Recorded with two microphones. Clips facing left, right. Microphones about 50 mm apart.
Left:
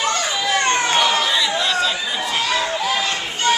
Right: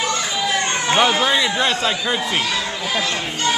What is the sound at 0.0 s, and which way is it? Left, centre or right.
Children playing, left.